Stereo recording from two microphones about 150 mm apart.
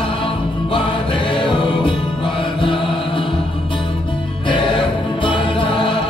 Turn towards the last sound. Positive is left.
turn(degrees=35)  # may be behind; listen again after turning